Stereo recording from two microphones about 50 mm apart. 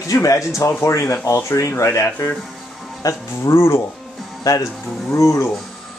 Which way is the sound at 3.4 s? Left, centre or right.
Left.